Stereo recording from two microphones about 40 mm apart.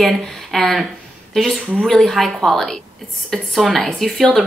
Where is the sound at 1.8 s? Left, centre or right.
Centre.